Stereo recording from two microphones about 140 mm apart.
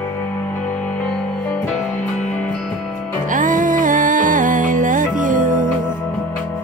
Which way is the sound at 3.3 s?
70° right (ahead or behind).